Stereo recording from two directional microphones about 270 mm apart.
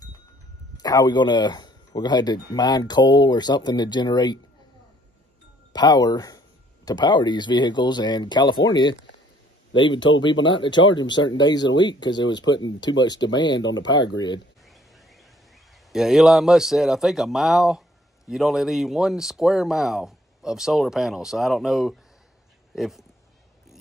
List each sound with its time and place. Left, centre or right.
0.7 s speech: centre
5.7 s speech: centre
13.6 s speech: left
14.1 s speech: centre
15.9 s speech: centre